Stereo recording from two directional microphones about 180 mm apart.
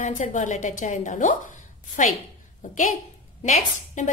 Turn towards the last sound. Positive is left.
turn(degrees=40)  # may be behind; listen again after turning